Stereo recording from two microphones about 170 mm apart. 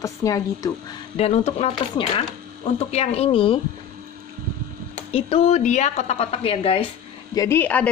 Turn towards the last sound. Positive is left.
turn(degrees=10)  # may be behind; listen again after turning